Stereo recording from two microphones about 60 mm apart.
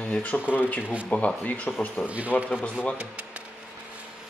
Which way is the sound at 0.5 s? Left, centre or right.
Left.